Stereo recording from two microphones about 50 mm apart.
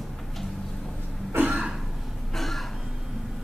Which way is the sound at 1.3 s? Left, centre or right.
Right.